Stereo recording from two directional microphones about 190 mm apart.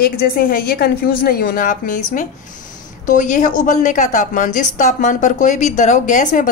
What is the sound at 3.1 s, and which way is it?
Speech, 45° left (ahead or behind).